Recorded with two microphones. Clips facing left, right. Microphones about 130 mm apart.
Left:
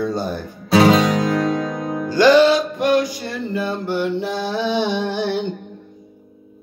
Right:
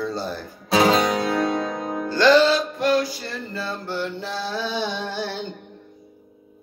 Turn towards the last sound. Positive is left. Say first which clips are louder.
# left 7 dB
turn(degrees=15)  # may be behind; listen again after turning